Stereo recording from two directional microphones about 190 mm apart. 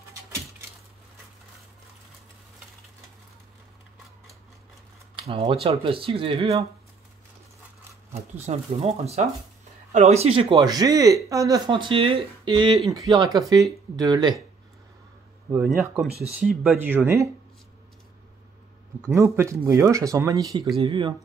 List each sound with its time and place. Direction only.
5.1 s speech: 30° right (ahead or behind)
8.4 s speech: 35° right (ahead or behind)
12.8 s speech: centre (ahead or behind)
13.5 s speech: 20° right (ahead or behind)
15.5 s speech: 5° right (ahead or behind)
19.0 s speech: 15° right (ahead or behind)